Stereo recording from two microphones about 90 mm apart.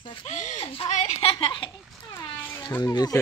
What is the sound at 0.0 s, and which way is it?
Speech, 70° left (ahead or behind).